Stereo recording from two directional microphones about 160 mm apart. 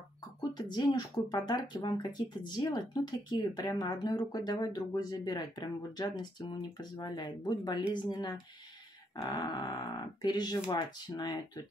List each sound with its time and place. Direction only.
0.4 s speech: 25° left (ahead or behind)